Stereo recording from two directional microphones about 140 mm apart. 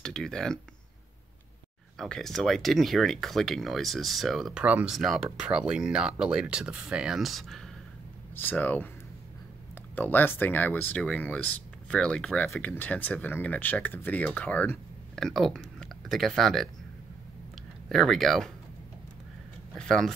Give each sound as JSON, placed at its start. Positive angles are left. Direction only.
{"t": 0.0, "sound": "speech", "side_deg": 5}
{"t": 2.0, "sound": "speech", "side_deg": 5}
{"t": 8.4, "sound": "speech", "side_deg": 10}
{"t": 9.9, "sound": "speech", "side_deg": 15}
{"t": 17.8, "sound": "speech", "side_deg": 0}
{"t": 19.7, "sound": "speech", "side_deg": 5}